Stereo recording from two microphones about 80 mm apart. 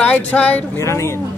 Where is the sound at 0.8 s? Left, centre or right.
Left.